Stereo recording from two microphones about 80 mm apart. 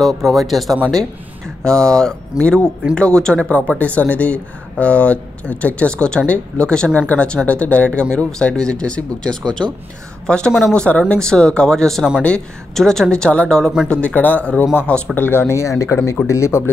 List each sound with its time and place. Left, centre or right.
0.0 s speech: centre; by 16.7 s left